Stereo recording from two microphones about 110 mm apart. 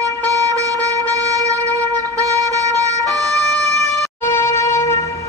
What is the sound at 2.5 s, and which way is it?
Emergency vehicle, 30° right (ahead or behind).